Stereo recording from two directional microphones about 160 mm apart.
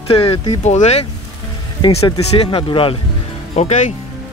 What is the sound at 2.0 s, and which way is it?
Speech, 30° left (ahead or behind).